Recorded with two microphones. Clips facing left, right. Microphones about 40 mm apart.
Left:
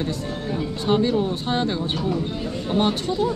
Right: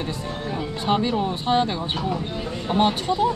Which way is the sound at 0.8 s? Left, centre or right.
Centre.